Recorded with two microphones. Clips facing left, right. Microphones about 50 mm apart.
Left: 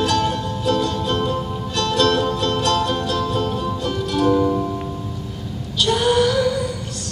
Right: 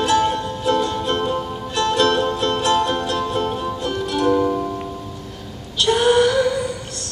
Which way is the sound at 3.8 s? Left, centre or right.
Centre.